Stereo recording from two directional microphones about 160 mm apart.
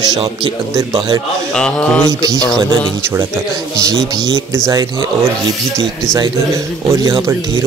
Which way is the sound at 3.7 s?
20° right (ahead or behind).